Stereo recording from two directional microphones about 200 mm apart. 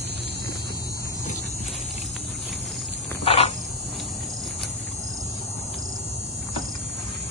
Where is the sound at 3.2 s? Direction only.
30° left (ahead or behind).